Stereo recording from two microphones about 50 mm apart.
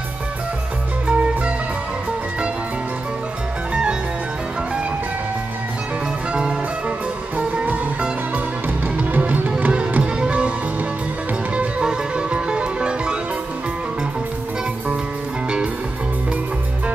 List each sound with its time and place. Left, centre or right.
1.0 s music: right
7.3 s music: right
9.1 s music: right
11.5 s music: centre